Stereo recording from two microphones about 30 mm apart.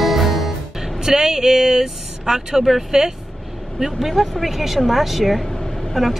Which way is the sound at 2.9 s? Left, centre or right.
Right.